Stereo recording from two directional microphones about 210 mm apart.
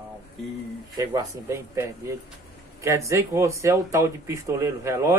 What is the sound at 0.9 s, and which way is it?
Speech, 15° right (ahead or behind).